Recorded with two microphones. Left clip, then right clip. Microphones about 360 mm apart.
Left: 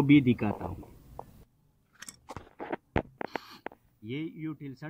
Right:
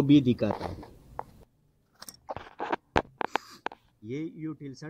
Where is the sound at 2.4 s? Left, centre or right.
Right.